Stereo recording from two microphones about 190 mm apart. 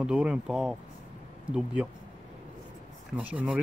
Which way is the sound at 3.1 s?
5° right (ahead or behind).